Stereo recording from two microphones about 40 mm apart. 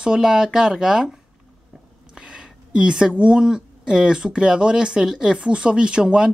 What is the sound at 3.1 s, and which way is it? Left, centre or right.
Speech, right.